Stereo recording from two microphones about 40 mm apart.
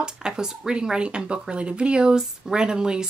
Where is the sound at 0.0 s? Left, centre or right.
Centre.